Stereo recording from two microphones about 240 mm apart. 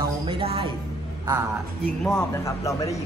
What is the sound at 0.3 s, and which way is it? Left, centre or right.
Speech, right.